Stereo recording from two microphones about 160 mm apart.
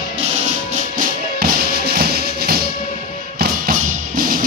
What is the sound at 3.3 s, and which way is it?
Music, 60° right (ahead or behind).